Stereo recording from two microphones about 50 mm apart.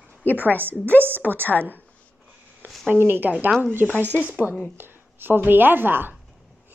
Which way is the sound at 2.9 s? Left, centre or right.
Right.